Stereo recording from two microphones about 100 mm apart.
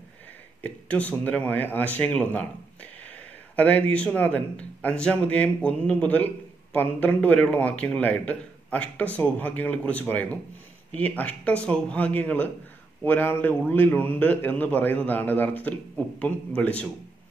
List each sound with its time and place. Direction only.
0.6 s speech: 15° left (ahead or behind)